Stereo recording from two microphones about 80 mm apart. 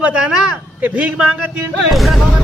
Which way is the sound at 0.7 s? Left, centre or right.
Centre.